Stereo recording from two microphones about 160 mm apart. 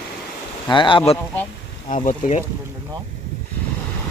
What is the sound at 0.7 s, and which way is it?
Speech, 30° left (ahead or behind).